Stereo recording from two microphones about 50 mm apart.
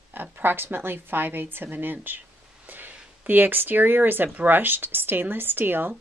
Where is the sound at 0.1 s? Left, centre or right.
Right.